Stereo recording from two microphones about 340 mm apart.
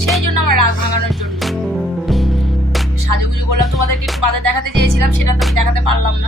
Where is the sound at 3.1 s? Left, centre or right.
Right.